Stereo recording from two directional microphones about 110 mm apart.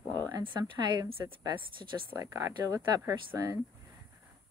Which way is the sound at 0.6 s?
45° right (ahead or behind).